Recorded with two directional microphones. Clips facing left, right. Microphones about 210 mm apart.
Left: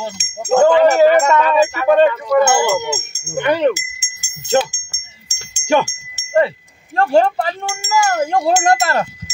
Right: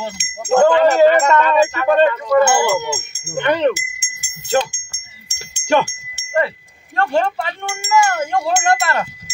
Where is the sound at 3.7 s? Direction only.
60° right (ahead or behind).